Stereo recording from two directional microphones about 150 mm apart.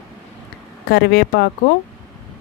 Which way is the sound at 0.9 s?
90° left.